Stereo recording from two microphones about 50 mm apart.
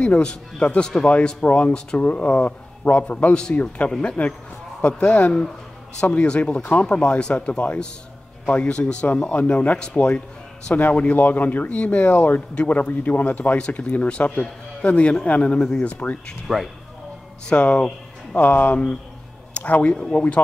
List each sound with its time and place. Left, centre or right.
0.1 s speech: left
13.6 s speech: left
14.2 s speech: left
14.8 s speech: left
16.5 s speech: centre
17.5 s speech: left
18.4 s speech: left
19.9 s speech: centre